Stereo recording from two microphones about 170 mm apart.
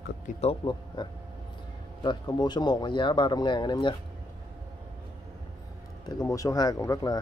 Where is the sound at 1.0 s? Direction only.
25° left (ahead or behind).